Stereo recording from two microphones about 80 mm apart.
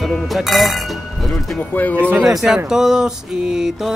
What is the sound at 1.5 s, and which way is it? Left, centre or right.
Speech, left.